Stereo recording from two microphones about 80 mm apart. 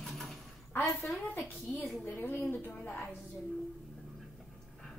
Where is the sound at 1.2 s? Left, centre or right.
Left.